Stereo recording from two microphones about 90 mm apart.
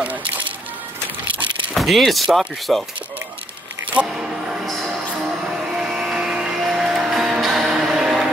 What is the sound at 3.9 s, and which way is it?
Speech, 10° right (ahead or behind).